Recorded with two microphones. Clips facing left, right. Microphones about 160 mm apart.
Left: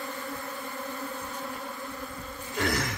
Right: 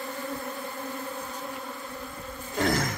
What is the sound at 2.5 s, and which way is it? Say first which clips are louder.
Insect: right 3 dB; 45° right (ahead or behind).